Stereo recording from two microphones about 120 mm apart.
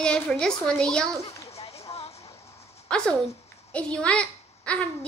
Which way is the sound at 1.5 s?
60° left (ahead or behind).